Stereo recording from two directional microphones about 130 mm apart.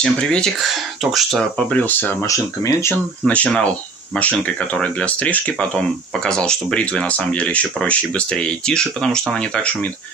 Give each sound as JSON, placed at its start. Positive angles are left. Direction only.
{"t": 0.0, "sound": "speech", "side_deg": 5}
{"t": 2.2, "sound": "speech", "side_deg": 25}
{"t": 3.3, "sound": "speech", "side_deg": 10}